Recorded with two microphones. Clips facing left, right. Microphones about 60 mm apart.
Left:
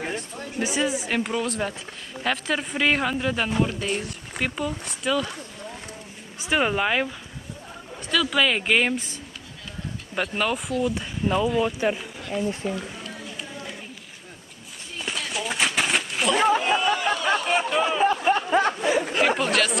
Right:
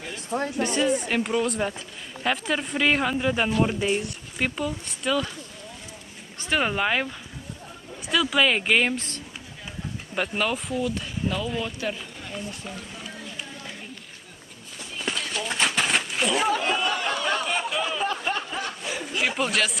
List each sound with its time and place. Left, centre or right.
0.6 s speech: centre
4.0 s speech: centre
6.4 s speech: centre
8.9 s speech: centre
10.1 s speech: centre
10.9 s speech: centre
12.3 s speech: centre
13.0 s run: centre
15.0 s a sound: centre
16.5 s chatter: centre
17.3 s chatter: centre
17.7 s a sound: centre
18.5 s a sound: left
19.2 s speech: centre